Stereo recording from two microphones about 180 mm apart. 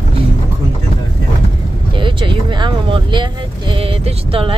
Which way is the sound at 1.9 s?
25° right (ahead or behind).